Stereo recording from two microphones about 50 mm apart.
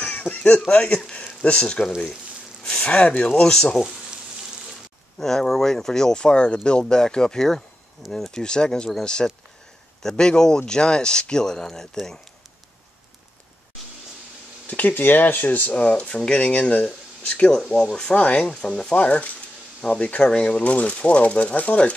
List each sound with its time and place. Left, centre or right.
0.0 s a sound: left
0.7 s speech: left
5.2 s speech: centre
8.4 s speech: centre
14.7 s speech: left
18.5 s speech: centre